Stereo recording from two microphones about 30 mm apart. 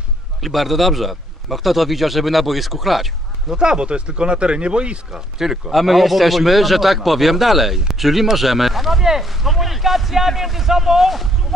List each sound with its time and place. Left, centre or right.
0.4 s a man's voice: centre
3.4 s speech: right
5.7 s a man's voice: centre